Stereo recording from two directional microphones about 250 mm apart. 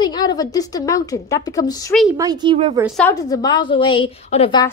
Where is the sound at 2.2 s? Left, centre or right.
Centre.